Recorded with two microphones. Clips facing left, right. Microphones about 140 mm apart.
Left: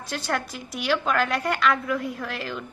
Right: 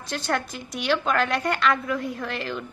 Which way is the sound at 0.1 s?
5° left (ahead or behind).